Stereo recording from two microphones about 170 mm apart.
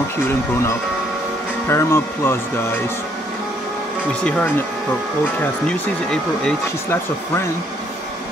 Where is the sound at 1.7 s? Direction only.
15° left (ahead or behind).